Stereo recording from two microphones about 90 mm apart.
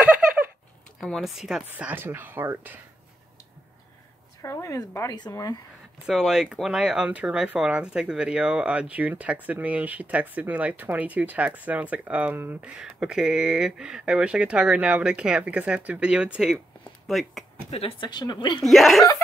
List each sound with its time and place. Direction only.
1.0 s speech: centre (ahead or behind)
2.0 s speech: 25° right (ahead or behind)
4.4 s speech: 35° left (ahead or behind)
6.0 s speech: 5° right (ahead or behind); by 12.7 s 20° right (ahead or behind)
12.7 s speech: 10° right (ahead or behind)
17.1 s speech: centre (ahead or behind)
18.0 s speech: 55° left (ahead or behind)
18.7 s speech: centre (ahead or behind)